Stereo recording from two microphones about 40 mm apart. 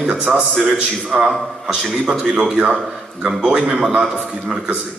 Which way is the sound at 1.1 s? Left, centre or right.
Right.